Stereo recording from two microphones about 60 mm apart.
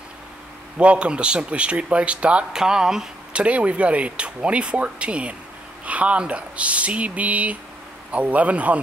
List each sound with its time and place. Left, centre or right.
0.7 s speech: centre
3.4 s speech: right